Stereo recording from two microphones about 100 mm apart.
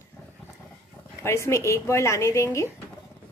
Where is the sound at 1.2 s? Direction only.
30° left (ahead or behind).